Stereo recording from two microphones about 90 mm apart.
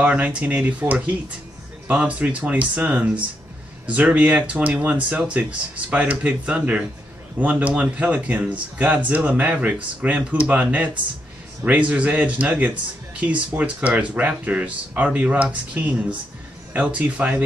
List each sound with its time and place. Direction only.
0.0 s speech: 15° right (ahead or behind)
11.9 s speech: 15° right (ahead or behind)